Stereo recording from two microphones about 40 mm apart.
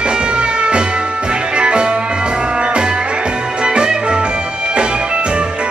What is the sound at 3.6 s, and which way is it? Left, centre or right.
Music, right.